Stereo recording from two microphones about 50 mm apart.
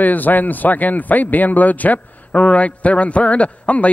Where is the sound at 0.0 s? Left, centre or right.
Left.